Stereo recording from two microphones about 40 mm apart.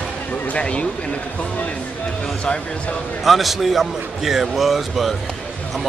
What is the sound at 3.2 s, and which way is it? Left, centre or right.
A man's voice, centre.